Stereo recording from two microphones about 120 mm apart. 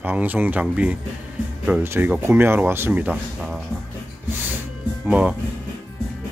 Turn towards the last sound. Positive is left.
turn(degrees=-10)  # may be behind; listen again after turning